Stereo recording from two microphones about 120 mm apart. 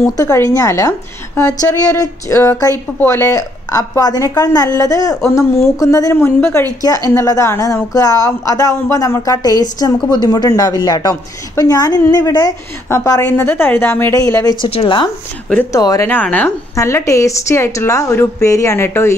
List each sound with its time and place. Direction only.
0.2 s a woman's voice: 25° left (ahead or behind)
13.2 s a woman's voice: 15° left (ahead or behind)
14.7 s speech: 50° left (ahead or behind)
15.7 s a woman's voice: 30° left (ahead or behind)
16.1 s speech: 15° left (ahead or behind)
16.7 s a woman's voice: 25° left (ahead or behind)